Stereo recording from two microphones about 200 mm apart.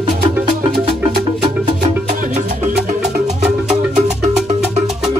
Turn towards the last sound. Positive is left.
turn(degrees=-35)  # may be behind; listen again after turning